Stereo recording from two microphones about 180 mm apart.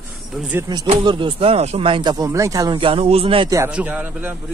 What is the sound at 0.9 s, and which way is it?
Speech, 25° right (ahead or behind).